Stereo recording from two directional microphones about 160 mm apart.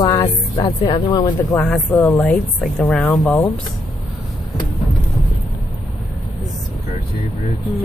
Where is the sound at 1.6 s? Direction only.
5° left (ahead or behind).